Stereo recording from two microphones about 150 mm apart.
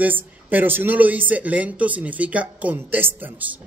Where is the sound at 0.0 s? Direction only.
10° right (ahead or behind).